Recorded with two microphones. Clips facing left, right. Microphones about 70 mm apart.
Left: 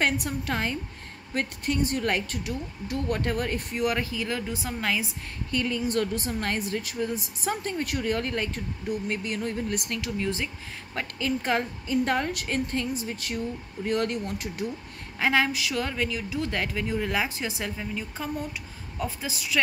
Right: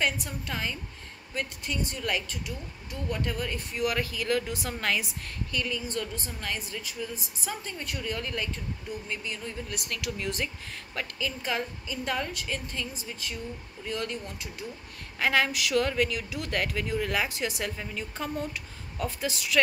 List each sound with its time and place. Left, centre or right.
0.0 s a woman's voice: left
2.4 s a woman's voice: left
3.9 s speech: left
5.5 s speech: left
5.9 s a woman's voice: left
9.7 s speech: left
11.1 s a woman's voice: left
13.0 s a woman's voice: left
15.1 s a woman's voice: centre
17.7 s a woman's voice: centre
18.9 s speech: centre